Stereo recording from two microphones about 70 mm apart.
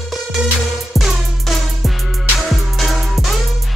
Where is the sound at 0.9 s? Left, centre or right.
Centre.